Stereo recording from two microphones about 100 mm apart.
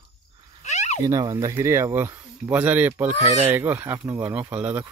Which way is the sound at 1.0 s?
35° right (ahead or behind).